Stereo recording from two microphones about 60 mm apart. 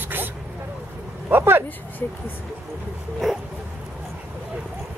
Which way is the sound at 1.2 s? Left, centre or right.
Right.